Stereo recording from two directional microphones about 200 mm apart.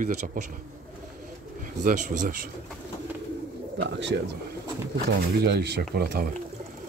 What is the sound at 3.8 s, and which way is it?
Speech, 60° right (ahead or behind).